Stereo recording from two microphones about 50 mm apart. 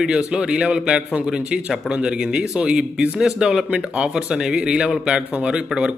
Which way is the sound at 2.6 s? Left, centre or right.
Right.